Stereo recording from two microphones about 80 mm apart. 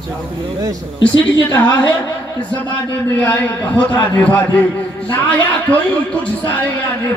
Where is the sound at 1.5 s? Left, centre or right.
Left.